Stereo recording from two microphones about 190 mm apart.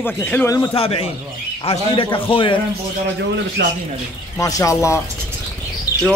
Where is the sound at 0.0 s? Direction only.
10° left (ahead or behind).